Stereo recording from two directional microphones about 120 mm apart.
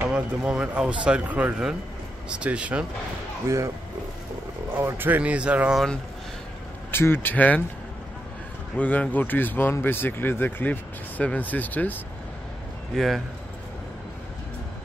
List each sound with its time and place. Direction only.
0.1 s speech: 5° right (ahead or behind)
3.4 s speech: 25° right (ahead or behind)
4.7 s speech: 15° right (ahead or behind)
6.9 s speech: 20° left (ahead or behind)
8.7 s speech: 10° left (ahead or behind)
12.9 s speech: centre (ahead or behind)